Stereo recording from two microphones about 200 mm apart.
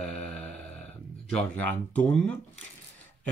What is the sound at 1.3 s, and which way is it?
Speech, 5° left (ahead or behind).